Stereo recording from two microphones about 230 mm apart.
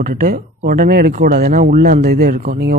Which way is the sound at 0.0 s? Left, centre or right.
Right.